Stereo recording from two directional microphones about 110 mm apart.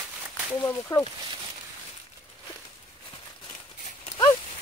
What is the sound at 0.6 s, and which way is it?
Speech, 25° left (ahead or behind).